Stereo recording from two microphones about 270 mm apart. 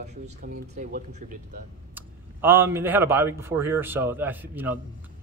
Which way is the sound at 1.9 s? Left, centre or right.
Centre.